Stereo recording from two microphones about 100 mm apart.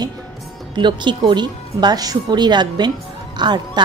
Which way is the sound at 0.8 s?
50° right (ahead or behind).